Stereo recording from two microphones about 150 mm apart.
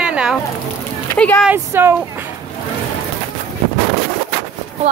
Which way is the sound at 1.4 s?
15° right (ahead or behind).